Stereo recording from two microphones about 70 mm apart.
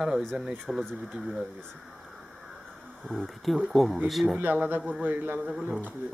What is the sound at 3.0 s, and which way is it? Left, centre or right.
Speech, centre.